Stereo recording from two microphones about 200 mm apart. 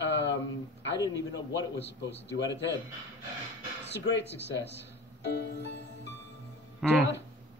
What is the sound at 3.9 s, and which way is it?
Speech, 60° left (ahead or behind).